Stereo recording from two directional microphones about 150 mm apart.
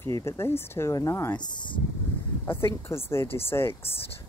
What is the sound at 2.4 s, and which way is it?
A woman's voice, 15° left (ahead or behind).